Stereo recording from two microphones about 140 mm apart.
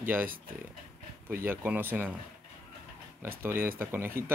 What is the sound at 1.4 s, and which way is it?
Speech, 15° right (ahead or behind).